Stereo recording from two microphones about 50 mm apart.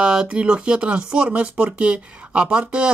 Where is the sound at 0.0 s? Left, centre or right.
Centre.